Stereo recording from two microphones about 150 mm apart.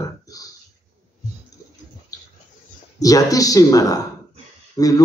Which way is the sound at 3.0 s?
25° left (ahead or behind).